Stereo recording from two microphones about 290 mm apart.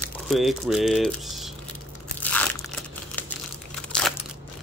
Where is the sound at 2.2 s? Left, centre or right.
Centre.